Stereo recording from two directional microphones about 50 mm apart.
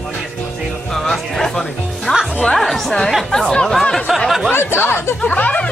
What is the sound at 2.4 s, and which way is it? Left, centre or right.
Music, centre.